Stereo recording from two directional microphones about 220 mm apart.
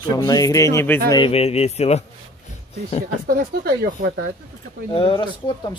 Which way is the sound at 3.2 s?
45° right (ahead or behind).